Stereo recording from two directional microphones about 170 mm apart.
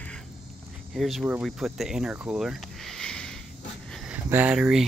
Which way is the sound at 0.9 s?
Centre (ahead or behind).